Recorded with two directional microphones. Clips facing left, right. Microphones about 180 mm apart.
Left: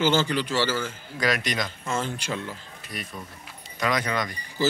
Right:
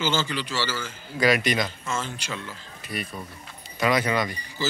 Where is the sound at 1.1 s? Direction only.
5° right (ahead or behind).